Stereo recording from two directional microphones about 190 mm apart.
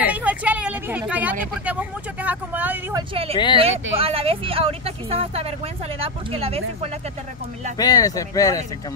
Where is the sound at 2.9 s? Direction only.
30° right (ahead or behind).